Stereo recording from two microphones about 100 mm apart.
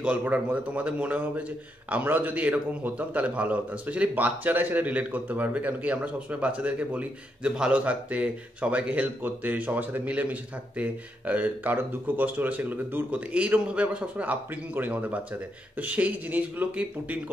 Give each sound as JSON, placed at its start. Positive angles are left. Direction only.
{"t": 0.0, "sound": "a man's voice", "side_deg": -15}